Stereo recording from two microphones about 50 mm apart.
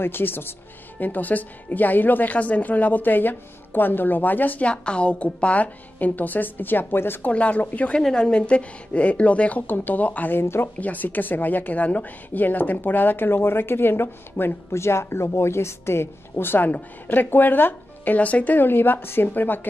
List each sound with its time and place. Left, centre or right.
0.0 s a woman's voice: left
4.6 s a woman's voice: left
7.2 s a woman's voice: left
8.0 s a woman's voice: centre; by 10.4 s left
10.4 s a woman's voice: left
10.8 s a woman's voice: left